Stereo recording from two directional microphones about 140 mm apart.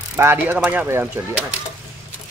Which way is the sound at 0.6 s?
15° right (ahead or behind).